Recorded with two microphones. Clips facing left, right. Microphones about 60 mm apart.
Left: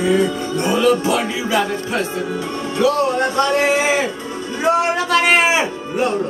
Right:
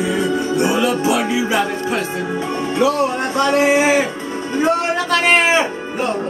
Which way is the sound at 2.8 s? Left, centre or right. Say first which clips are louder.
Left 2 dB; centre.